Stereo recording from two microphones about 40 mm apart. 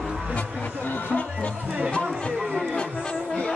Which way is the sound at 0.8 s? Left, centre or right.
Left.